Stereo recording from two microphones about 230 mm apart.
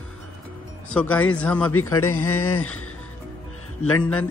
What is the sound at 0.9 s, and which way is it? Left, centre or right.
Speech, centre.